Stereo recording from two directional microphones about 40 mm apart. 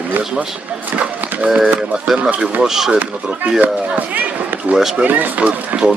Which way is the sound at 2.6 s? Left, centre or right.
Centre.